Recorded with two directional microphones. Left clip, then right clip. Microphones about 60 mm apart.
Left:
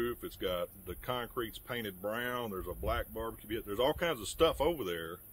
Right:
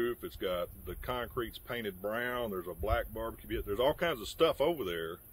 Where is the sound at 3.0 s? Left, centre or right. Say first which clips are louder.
Right 1 dB; left.